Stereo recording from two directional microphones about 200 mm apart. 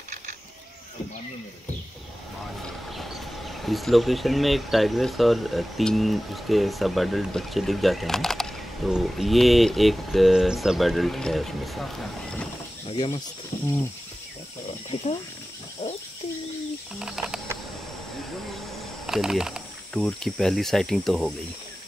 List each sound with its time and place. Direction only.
2.6 s speech: centre (ahead or behind)
12.8 s speech: 25° left (ahead or behind)
15.8 s bird: 35° left (ahead or behind)
17.0 s a sound: 5° right (ahead or behind)
19.0 s speech: centre (ahead or behind)